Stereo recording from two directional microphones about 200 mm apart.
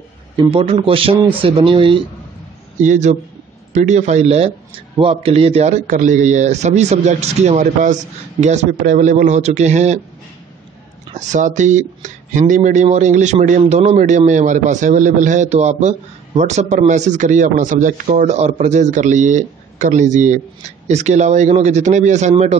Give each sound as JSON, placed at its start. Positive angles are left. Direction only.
{"t": 0.4, "sound": "speech", "side_deg": -30}
{"t": 2.8, "sound": "speech", "side_deg": -35}
{"t": 11.1, "sound": "speech", "side_deg": -35}